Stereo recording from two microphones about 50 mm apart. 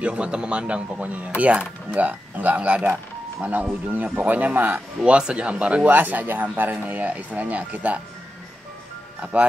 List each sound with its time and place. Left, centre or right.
0.0 s speech: right
5.9 s speech: right
9.2 s speech: right